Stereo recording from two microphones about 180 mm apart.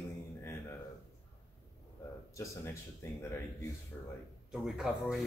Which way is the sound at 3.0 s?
15° left (ahead or behind).